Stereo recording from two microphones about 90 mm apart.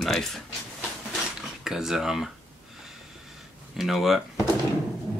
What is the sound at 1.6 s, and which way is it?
Speech, 5° right (ahead or behind).